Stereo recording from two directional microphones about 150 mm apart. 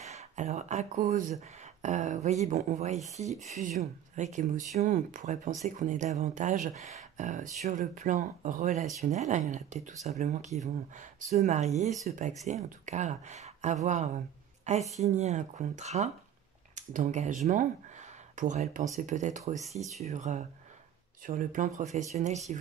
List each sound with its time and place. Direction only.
0.0 s speech: 50° right (ahead or behind)
18.4 s speech: 55° right (ahead or behind)
19.5 s speech: centre (ahead or behind)
20.0 s speech: 50° right (ahead or behind)